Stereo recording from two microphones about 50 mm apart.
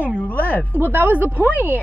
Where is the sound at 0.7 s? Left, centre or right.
Right.